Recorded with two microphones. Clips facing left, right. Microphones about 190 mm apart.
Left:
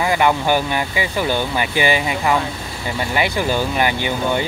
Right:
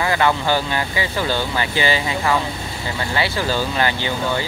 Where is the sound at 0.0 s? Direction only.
15° left (ahead or behind).